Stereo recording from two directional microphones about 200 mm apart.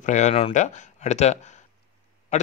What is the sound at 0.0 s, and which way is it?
Speech, 35° left (ahead or behind).